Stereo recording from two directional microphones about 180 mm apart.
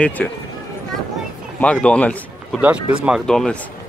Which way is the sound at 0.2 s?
5° left (ahead or behind).